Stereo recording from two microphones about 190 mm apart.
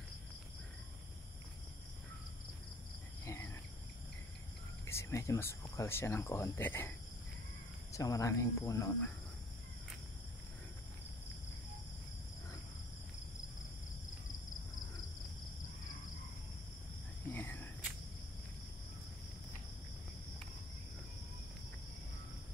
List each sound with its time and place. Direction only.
4.8 s speech: 15° left (ahead or behind)
7.9 s speech: 15° left (ahead or behind)
17.3 s whispering: 10° left (ahead or behind)